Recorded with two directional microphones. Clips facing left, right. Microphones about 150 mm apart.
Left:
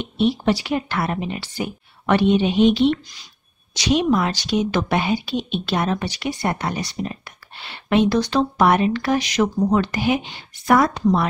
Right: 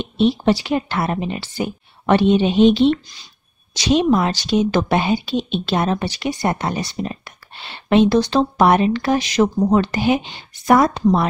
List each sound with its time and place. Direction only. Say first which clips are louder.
0.0 s speech: right 3 dB; 25° right (ahead or behind)